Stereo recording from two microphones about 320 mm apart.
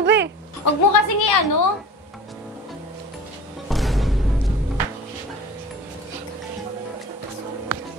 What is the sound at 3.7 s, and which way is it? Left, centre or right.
Music, centre.